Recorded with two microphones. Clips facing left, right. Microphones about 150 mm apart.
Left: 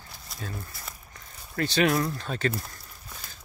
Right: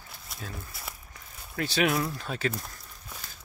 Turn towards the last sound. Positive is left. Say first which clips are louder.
# even
turn(degrees=0)  # may be behind; listen again after turning